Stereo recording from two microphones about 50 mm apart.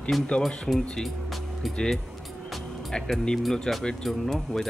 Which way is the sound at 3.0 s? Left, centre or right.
Centre.